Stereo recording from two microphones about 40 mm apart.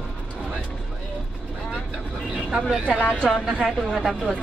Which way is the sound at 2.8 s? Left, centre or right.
Left.